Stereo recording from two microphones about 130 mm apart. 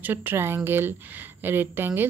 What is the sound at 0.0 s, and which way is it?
A woman's voice, 15° right (ahead or behind).